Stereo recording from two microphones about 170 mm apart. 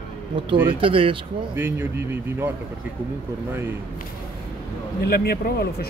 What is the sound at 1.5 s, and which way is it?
Speech, 15° right (ahead or behind).